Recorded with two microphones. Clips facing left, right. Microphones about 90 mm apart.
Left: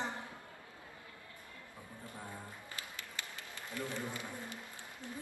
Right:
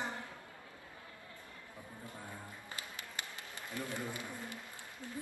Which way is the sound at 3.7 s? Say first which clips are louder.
Even; 20° right (ahead or behind).